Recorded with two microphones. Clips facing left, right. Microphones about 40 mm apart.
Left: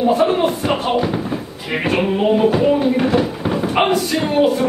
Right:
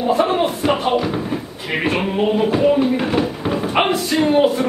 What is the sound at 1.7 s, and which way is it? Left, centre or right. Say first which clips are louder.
Music: left 2 dB; centre.